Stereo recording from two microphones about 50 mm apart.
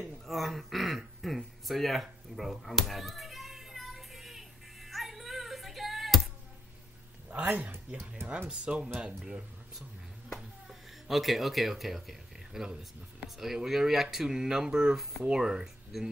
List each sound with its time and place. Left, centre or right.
0.3 s throat clearing: centre
7.4 s speech: right
8.5 s speech: centre
10.7 s speech: centre